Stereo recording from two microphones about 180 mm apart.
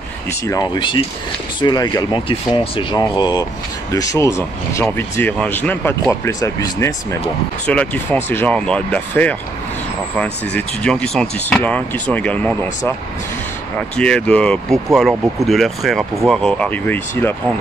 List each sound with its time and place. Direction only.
0.3 s speech: 20° left (ahead or behind)
10.5 s speech: 5° left (ahead or behind)
13.9 s speech: 5° left (ahead or behind)